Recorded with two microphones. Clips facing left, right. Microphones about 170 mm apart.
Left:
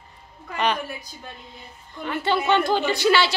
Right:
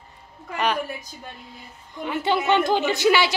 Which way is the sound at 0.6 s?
5° right (ahead or behind).